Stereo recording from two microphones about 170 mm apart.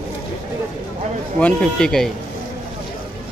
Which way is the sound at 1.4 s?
5° left (ahead or behind).